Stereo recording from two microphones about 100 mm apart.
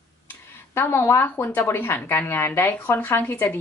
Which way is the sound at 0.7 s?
25° left (ahead or behind).